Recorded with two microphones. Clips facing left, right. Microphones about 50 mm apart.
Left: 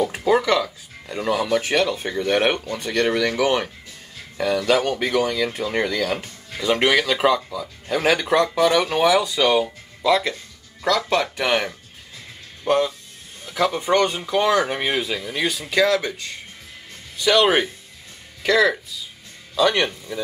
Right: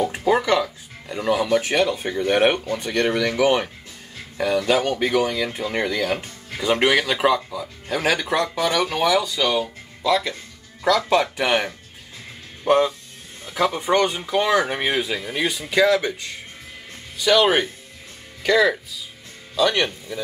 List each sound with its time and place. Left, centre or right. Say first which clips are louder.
0.2 s speech: even; centre
3.1 s speech: even; centre
3.4 s speech: right 2 dB; centre
6.2 s speech: even; centre
12.6 s speech: right 2 dB; centre
13.5 s a sound: even; centre
13.8 s speech: even; centre
17.2 s speech: even; centre